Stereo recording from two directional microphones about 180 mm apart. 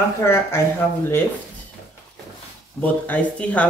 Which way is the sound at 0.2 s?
15° left (ahead or behind).